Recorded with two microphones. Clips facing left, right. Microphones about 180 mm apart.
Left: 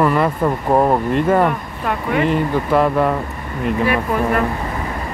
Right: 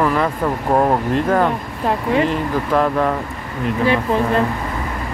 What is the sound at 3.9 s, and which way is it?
Speech, 25° right (ahead or behind).